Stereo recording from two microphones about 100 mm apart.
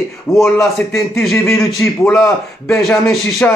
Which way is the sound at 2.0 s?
10° left (ahead or behind).